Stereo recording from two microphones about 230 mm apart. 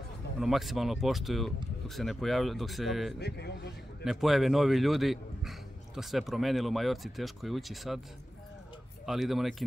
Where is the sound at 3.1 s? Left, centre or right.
Left.